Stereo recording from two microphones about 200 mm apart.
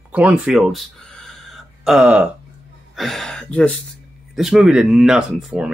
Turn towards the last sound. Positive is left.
turn(degrees=-5)  # may be behind; listen again after turning